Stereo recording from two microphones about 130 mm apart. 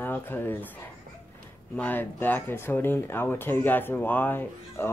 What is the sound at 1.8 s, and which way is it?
Speech, 15° left (ahead or behind).